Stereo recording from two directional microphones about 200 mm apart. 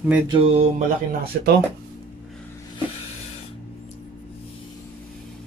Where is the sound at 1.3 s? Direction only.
45° right (ahead or behind).